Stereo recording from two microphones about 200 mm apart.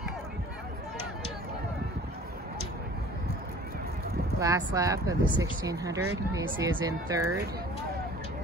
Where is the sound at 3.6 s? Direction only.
50° right (ahead or behind).